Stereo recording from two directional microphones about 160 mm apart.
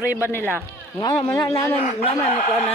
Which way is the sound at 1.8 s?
40° left (ahead or behind).